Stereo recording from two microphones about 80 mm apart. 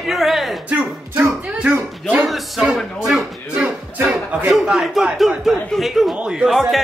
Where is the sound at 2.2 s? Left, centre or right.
Centre.